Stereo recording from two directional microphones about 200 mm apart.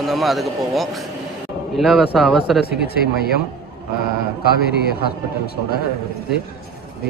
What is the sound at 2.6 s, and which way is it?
Speech, 50° left (ahead or behind).